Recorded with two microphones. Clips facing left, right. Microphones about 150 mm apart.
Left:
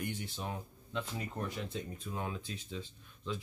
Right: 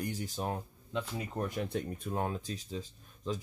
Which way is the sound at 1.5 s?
55° right (ahead or behind).